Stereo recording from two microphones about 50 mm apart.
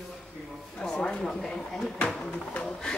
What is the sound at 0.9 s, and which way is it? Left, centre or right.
Speech, centre.